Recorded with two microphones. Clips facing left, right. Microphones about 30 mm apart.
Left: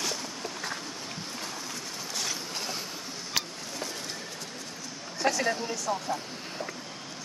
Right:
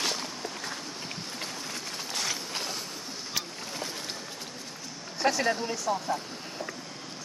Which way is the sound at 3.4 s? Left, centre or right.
Left.